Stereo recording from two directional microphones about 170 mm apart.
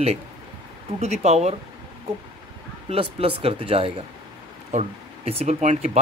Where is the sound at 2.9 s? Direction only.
35° right (ahead or behind).